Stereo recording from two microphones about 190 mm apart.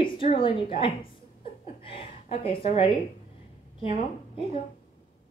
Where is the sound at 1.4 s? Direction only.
30° left (ahead or behind).